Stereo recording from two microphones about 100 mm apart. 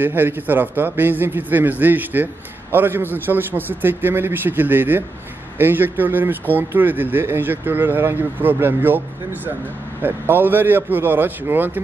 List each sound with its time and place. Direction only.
0.0 s speech: 20° right (ahead or behind)